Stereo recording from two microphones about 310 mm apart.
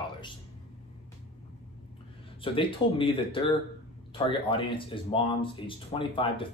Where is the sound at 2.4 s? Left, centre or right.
Centre.